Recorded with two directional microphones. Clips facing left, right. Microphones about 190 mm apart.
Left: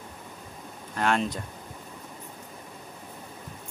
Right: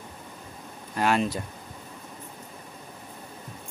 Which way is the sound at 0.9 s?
5° right (ahead or behind).